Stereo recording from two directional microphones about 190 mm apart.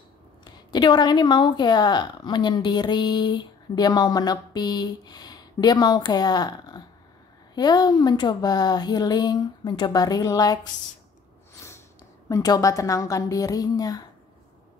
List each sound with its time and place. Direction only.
0.7 s a woman's voice: 25° left (ahead or behind)
12.3 s a woman's voice: 20° left (ahead or behind)